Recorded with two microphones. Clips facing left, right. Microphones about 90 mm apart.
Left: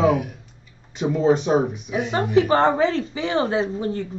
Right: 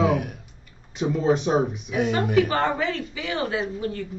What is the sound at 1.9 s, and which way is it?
A woman's voice, 30° left (ahead or behind).